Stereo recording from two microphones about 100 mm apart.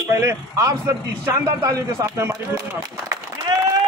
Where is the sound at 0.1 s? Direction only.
30° right (ahead or behind).